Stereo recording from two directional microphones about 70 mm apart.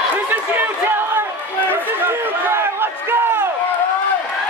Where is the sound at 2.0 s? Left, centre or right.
Right.